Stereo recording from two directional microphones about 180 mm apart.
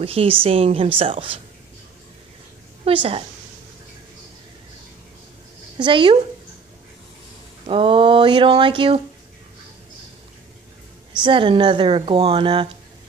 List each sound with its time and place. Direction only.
0.0 s a woman's voice: 30° right (ahead or behind)
2.8 s a woman's voice: 30° right (ahead or behind)
5.8 s a woman's voice: 25° right (ahead or behind)
7.6 s a woman's voice: 30° right (ahead or behind)
11.2 s a woman's voice: 30° right (ahead or behind)